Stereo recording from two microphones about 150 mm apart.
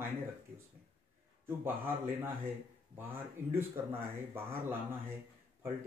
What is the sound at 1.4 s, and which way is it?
Speech, 15° right (ahead or behind).